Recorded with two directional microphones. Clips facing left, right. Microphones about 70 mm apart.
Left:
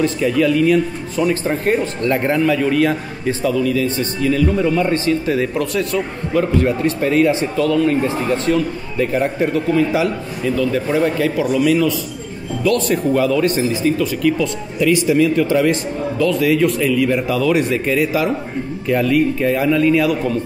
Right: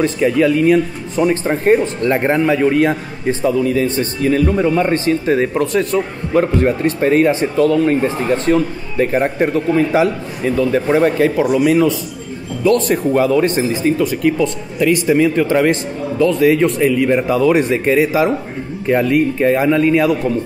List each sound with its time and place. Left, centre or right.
0.0 s a man's voice: right